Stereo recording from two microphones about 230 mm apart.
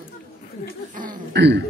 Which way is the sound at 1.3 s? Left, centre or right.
Right.